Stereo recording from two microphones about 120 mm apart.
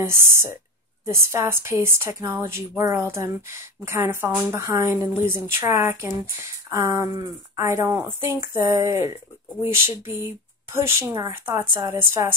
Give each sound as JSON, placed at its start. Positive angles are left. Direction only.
{"t": 0.0, "sound": "speech", "side_deg": -20}